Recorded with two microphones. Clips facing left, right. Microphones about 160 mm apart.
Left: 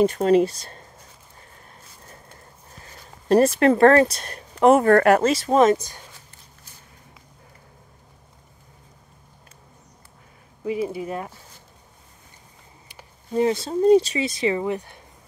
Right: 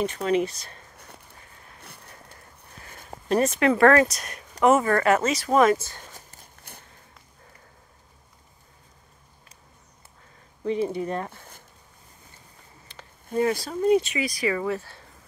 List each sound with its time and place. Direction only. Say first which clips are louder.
0.1 s speech: left 6 dB; 35° left (ahead or behind)
3.3 s speech: left 5 dB; 35° left (ahead or behind)
4.7 s speech: left 5 dB; 55° left (ahead or behind)
5.4 s speech: left 2 dB; 25° left (ahead or behind)
10.6 s speech: even; 5° left (ahead or behind)
13.3 s speech: left 3 dB; 25° left (ahead or behind)